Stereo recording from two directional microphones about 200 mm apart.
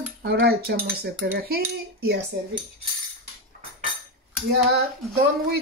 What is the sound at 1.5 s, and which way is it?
Cutlery, 50° right (ahead or behind).